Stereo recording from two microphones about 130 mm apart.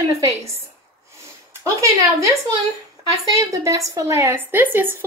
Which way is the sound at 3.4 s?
25° right (ahead or behind).